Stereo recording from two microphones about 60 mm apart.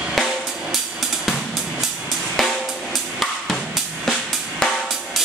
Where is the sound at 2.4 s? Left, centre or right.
Centre.